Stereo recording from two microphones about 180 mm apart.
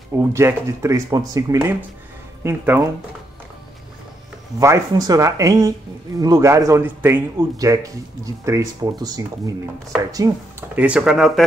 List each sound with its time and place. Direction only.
0.1 s speech: 15° right (ahead or behind)
4.6 s a man's voice: 15° right (ahead or behind)
10.8 s speech: 5° right (ahead or behind)